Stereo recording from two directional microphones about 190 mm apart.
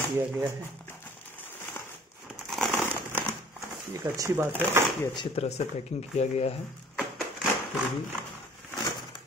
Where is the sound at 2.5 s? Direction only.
10° left (ahead or behind).